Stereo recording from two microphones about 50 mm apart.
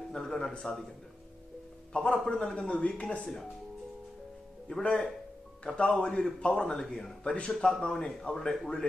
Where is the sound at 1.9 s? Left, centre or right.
Left.